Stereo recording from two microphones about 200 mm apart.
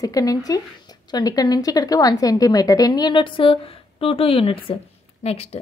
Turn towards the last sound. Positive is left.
turn(degrees=30)  # may be behind; listen again after turning